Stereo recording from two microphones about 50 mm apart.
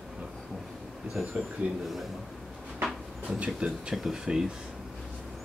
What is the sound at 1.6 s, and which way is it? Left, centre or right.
Speech, right.